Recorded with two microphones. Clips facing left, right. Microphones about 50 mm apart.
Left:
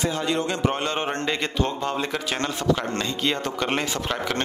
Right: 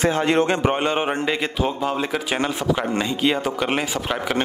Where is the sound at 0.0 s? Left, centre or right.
Right.